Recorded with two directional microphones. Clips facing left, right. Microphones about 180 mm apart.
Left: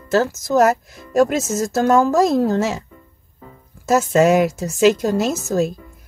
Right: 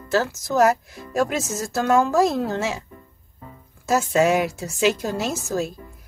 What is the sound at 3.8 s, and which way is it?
A woman's voice, 45° left (ahead or behind).